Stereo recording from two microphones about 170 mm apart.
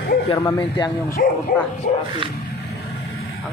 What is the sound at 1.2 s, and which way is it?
Speech, 60° left (ahead or behind).